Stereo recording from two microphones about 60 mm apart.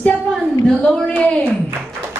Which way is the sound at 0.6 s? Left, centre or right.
Centre.